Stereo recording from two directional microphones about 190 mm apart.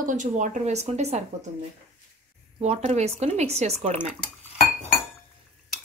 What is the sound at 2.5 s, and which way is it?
A woman's voice, 35° right (ahead or behind).